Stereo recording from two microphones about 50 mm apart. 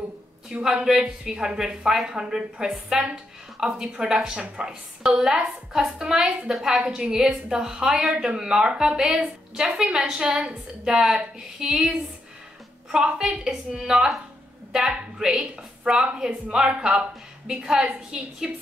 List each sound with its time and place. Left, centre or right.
0.5 s a woman's voice: centre
8.4 s a woman's voice: centre
12.9 s a woman's voice: centre